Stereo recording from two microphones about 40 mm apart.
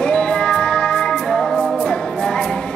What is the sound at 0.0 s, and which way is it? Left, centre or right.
Music, left.